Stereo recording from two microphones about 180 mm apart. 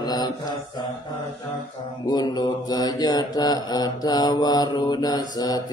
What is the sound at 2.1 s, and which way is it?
Mantra, 25° left (ahead or behind).